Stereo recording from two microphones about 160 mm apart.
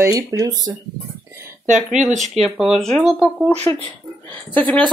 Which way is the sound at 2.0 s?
50° right (ahead or behind).